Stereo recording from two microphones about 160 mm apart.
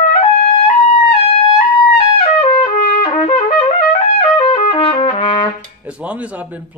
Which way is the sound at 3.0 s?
40° left (ahead or behind).